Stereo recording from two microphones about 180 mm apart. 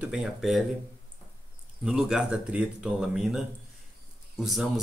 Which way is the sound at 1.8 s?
5° right (ahead or behind).